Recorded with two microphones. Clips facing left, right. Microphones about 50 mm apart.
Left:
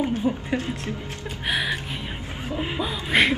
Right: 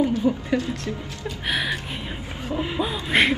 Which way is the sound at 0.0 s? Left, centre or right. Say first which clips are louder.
Right 3 dB; left.